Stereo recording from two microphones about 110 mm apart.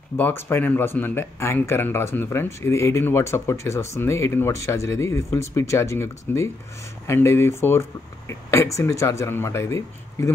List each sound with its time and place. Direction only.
0.2 s speech: 20° left (ahead or behind)